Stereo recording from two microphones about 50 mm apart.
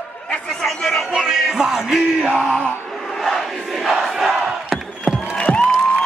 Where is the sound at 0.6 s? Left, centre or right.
Centre.